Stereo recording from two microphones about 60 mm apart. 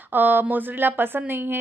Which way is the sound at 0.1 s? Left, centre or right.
Right.